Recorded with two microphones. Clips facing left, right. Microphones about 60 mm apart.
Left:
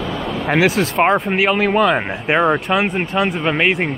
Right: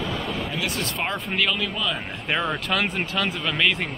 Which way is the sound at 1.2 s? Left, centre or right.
Left.